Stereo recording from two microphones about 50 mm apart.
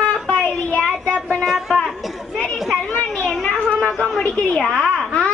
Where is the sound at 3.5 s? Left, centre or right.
Left.